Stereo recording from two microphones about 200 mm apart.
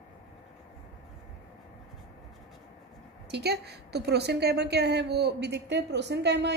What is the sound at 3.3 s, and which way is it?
A woman's voice, 55° right (ahead or behind).